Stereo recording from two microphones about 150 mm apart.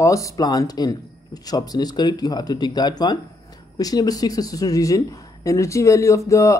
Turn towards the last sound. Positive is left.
turn(degrees=20)  # may be behind; listen again after turning